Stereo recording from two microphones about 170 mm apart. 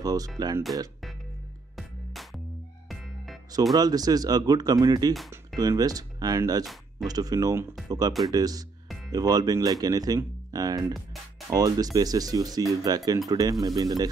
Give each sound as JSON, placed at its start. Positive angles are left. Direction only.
{"t": 0.0, "sound": "speech", "side_deg": -20}
{"t": 1.8, "sound": "music", "side_deg": 0}
{"t": 3.7, "sound": "speech", "side_deg": -20}
{"t": 6.6, "sound": "a sound", "side_deg": 0}
{"t": 7.1, "sound": "speech", "side_deg": -20}
{"t": 10.9, "sound": "music", "side_deg": 0}
{"t": 11.5, "sound": "speech", "side_deg": -20}